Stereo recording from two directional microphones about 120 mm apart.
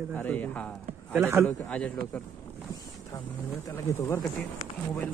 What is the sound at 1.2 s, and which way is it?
Speech, 20° right (ahead or behind).